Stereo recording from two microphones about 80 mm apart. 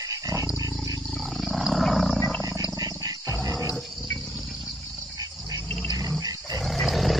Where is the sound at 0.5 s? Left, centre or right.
Right.